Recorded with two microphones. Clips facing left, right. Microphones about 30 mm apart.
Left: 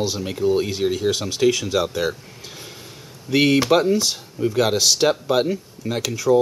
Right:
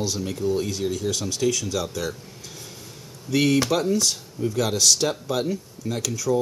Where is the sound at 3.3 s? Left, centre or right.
Left.